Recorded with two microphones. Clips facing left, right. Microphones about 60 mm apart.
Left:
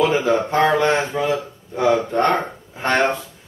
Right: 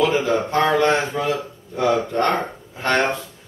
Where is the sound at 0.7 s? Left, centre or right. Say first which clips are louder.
Even; left.